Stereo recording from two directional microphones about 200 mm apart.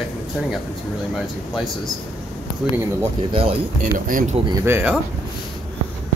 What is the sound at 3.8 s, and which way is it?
Speech, 40° right (ahead or behind).